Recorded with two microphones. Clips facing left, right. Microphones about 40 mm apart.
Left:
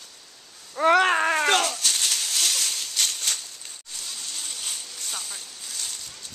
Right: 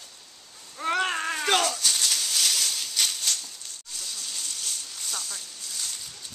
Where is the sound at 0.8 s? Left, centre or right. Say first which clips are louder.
Left 8 dB; left.